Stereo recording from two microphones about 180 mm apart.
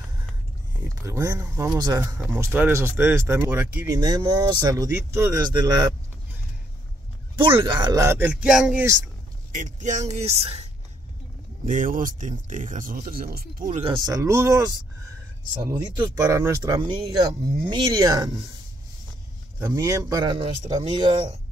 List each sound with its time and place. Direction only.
0.9 s speech: 15° right (ahead or behind)
7.5 s speech: 25° right (ahead or behind); by 8.8 s 5° right (ahead or behind)
8.8 s speech: 15° right (ahead or behind)
9.5 s speech: 45° right (ahead or behind)
11.6 s speech: 45° right (ahead or behind)
13.8 s speech: 20° right (ahead or behind)
19.6 s speech: 20° right (ahead or behind)